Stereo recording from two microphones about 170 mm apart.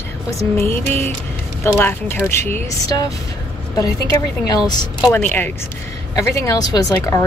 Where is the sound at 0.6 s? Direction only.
10° left (ahead or behind).